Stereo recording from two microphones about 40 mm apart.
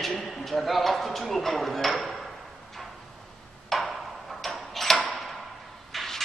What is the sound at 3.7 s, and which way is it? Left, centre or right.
Tick-tock, centre.